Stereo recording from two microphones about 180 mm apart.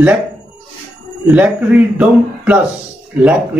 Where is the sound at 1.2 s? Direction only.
5° right (ahead or behind).